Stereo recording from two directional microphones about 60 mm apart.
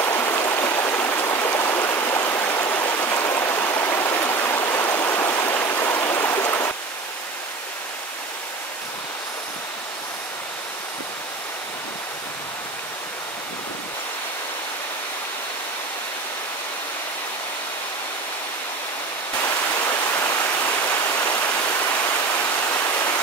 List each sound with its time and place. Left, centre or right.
0.0 s stream: left
19.4 s a sound: left
20.9 s waterfall: left